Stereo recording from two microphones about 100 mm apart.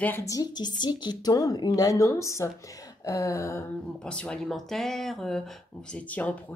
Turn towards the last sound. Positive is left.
turn(degrees=15)  # may be behind; listen again after turning